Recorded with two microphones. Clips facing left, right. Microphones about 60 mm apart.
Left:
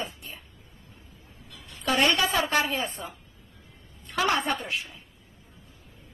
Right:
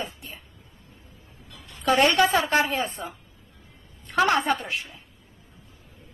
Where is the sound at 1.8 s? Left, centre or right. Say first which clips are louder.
Right 4 dB; right.